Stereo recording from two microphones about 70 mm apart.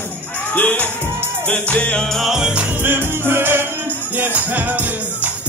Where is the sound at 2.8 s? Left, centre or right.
Right.